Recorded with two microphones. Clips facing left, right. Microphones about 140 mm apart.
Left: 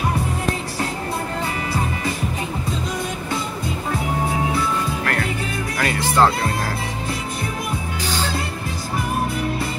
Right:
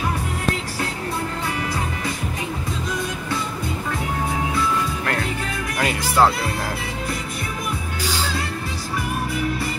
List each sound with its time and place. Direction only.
5.8 s music: 15° right (ahead or behind)
8.0 s music: 10° right (ahead or behind)